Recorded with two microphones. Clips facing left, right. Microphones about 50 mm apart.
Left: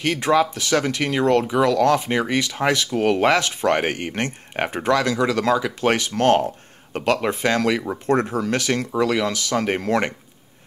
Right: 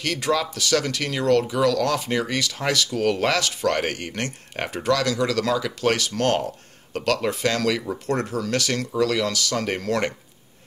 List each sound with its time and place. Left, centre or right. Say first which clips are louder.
0.0 s speech: left 5 dB; left